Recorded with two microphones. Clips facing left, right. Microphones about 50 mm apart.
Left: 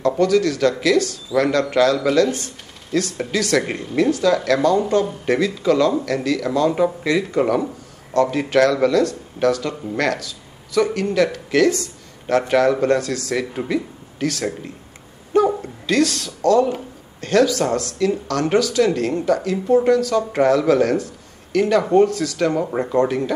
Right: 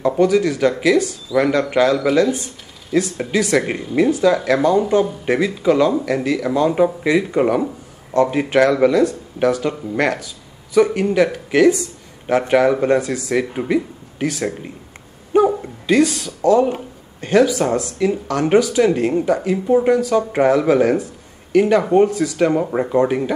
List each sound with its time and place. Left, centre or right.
0.0 s speech: centre
2.2 s speech: left
2.9 s speech: centre